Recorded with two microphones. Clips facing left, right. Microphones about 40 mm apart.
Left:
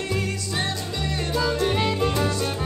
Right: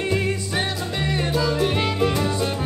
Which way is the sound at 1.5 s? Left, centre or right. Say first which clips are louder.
Right 1 dB; centre.